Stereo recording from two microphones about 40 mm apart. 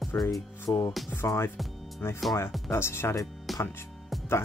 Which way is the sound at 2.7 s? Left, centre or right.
Left.